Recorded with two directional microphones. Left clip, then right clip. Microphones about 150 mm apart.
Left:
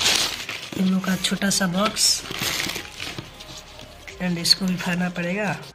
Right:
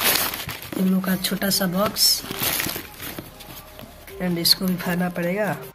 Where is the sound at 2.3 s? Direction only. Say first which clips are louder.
Even; 55° right (ahead or behind).